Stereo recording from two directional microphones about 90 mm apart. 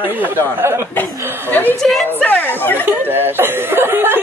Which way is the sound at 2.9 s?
20° right (ahead or behind).